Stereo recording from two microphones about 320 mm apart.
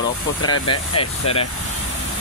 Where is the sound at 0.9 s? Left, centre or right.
Centre.